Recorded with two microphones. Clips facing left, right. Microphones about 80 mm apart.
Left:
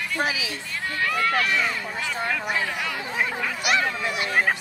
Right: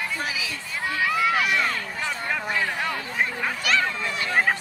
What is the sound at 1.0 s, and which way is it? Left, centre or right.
Run, centre.